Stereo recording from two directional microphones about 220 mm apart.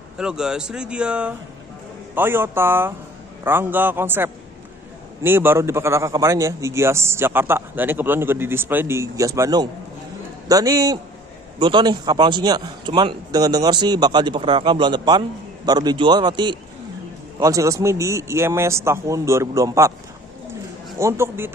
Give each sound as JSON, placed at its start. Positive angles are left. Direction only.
{"t": 0.2, "sound": "a man's voice", "side_deg": -5}
{"t": 21.0, "sound": "a man's voice", "side_deg": -10}